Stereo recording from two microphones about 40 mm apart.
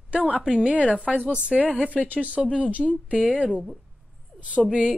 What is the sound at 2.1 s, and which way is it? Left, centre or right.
A woman's voice, right.